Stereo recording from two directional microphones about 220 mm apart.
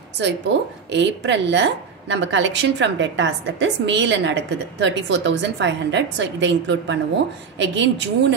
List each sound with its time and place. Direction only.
0.2 s a woman's voice: 55° right (ahead or behind)